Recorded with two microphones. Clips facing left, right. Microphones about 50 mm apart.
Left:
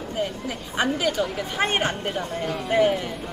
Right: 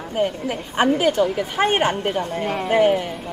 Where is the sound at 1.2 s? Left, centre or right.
Centre.